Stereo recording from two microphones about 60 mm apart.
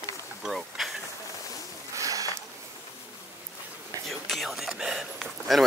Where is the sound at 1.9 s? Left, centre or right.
Right.